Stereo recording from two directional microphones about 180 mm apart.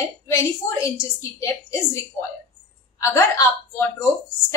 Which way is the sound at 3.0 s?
15° left (ahead or behind).